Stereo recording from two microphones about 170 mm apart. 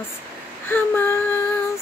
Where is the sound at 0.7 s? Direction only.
15° left (ahead or behind).